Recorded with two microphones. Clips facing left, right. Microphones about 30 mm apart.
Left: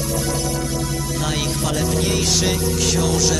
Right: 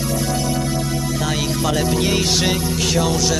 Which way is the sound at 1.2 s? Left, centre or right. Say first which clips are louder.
Right 1 dB; centre.